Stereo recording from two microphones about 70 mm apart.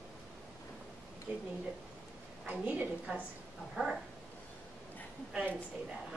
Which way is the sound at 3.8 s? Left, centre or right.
Centre.